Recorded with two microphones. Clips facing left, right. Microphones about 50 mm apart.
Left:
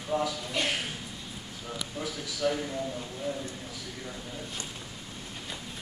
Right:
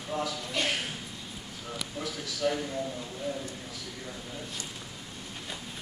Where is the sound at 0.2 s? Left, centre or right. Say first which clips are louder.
Left 1 dB; centre.